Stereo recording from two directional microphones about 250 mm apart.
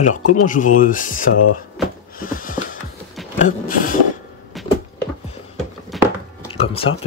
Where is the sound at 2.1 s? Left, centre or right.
Left.